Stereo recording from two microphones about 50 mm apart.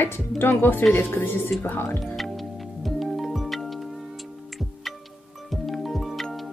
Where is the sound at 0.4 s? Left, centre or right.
Left.